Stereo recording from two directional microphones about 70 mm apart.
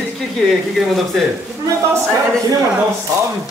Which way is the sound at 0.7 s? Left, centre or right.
Centre.